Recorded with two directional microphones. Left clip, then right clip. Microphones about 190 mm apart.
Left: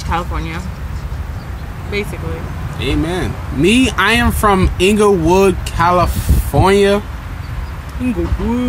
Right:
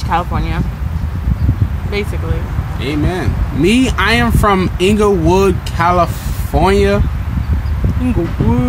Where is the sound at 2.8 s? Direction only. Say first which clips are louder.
Even; 20° left (ahead or behind).